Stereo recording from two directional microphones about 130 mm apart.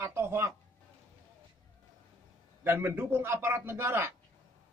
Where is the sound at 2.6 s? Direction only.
15° right (ahead or behind).